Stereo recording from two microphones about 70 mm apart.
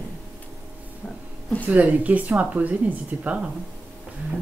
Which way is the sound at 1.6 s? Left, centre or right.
Right.